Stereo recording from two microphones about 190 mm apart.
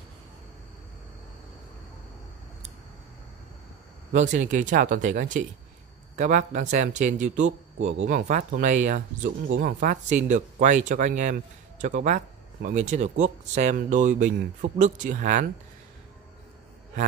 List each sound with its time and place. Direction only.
4.1 s speech: 40° right (ahead or behind)